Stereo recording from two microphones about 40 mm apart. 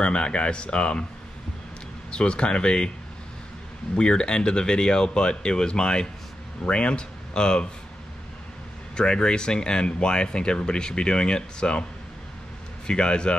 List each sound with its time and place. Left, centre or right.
0.0 s speech: left
2.0 s speech: left
3.9 s speech: left
8.9 s speech: left
12.8 s speech: left